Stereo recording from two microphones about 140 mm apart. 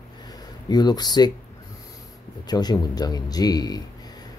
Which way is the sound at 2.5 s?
30° left (ahead or behind).